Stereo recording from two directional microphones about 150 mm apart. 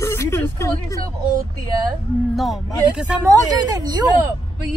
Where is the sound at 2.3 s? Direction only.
Centre (ahead or behind).